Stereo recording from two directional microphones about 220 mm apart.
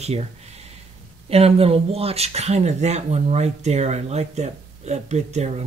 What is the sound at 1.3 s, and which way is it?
Speech, 25° right (ahead or behind).